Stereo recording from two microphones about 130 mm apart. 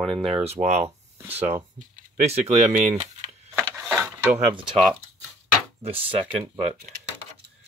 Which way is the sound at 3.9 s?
10° right (ahead or behind).